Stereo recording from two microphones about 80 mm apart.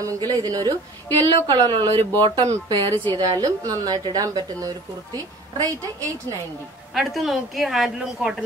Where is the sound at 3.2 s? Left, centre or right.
Right.